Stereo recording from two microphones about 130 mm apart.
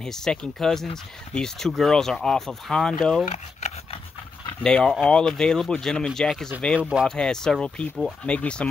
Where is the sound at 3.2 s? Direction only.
60° left (ahead or behind).